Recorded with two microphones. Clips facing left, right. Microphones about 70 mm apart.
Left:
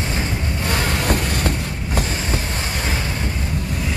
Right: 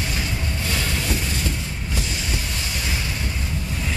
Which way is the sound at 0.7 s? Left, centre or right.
Left.